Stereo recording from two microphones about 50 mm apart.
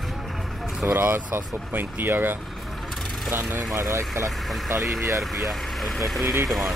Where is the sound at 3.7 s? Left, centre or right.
Right.